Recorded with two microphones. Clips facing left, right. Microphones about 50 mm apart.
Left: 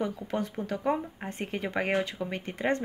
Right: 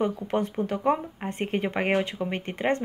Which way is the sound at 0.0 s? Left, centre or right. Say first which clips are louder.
Right 5 dB; right.